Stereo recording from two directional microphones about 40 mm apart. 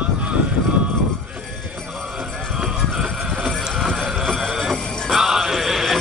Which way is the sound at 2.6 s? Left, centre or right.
Centre.